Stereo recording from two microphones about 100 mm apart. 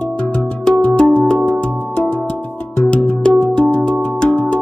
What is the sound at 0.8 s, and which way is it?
Music, 15° left (ahead or behind).